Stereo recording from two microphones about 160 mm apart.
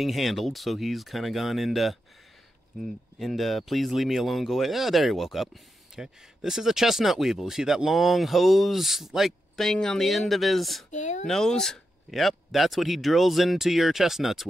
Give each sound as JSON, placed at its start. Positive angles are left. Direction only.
{"t": 0.0, "sound": "speech", "side_deg": 0}
{"t": 10.9, "sound": "speech", "side_deg": 50}
{"t": 11.2, "sound": "speech", "side_deg": 5}